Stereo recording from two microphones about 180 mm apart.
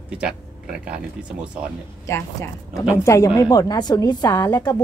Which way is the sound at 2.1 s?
20° left (ahead or behind).